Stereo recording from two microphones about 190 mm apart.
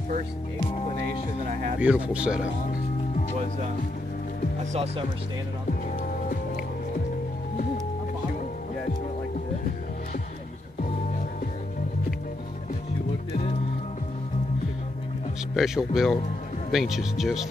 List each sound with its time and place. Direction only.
1.8 s speech: 5° right (ahead or behind)
2.4 s music: 40° left (ahead or behind)
15.5 s speech: 5° right (ahead or behind)